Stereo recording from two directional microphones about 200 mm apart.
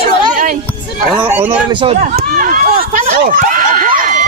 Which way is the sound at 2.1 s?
45° right (ahead or behind).